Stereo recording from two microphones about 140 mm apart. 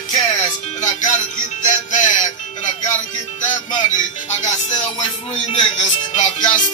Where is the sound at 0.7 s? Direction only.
65° left (ahead or behind).